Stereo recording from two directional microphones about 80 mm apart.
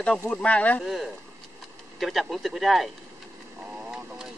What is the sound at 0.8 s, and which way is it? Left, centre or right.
Speech, centre.